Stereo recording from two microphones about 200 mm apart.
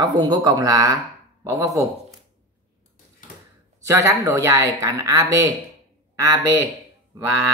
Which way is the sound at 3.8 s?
15° right (ahead or behind).